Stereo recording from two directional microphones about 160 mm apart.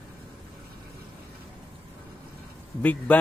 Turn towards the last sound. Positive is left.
turn(degrees=10)  # may be behind; listen again after turning